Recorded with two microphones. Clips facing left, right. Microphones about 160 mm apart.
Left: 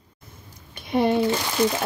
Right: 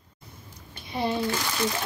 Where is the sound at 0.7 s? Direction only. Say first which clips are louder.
Left 7 dB; 55° left (ahead or behind).